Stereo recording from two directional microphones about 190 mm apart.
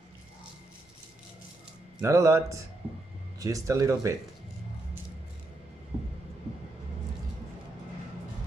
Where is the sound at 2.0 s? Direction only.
15° right (ahead or behind).